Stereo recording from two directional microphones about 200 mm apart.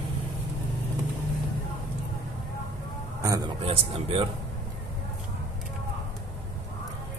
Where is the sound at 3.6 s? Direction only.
30° right (ahead or behind).